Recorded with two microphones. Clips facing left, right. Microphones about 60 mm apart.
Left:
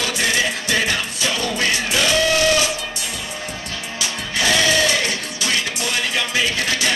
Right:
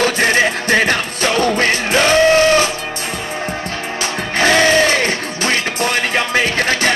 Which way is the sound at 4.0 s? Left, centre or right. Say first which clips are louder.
Right 6 dB; right.